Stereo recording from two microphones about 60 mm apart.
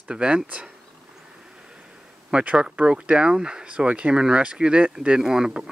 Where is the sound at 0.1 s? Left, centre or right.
Centre.